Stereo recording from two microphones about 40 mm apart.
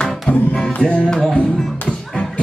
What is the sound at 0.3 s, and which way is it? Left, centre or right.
Music, left.